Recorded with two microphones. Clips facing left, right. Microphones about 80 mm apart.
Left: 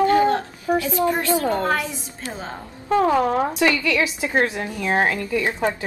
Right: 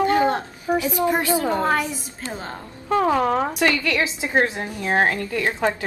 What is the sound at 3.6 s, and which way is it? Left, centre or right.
Speech, left.